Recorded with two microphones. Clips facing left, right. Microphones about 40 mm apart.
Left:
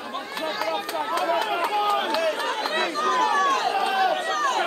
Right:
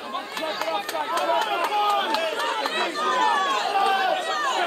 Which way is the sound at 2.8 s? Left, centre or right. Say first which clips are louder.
Even; right.